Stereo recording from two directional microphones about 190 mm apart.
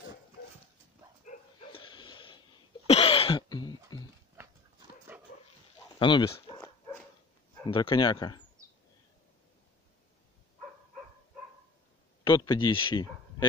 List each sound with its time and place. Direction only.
1.7 s a sound: 25° left (ahead or behind)
2.9 s throat clearing: 30° left (ahead or behind)
5.1 s dog: 10° right (ahead or behind)
5.9 s dog: 25° left (ahead or behind)
7.6 s speech: 25° left (ahead or behind)
12.3 s speech: 20° left (ahead or behind)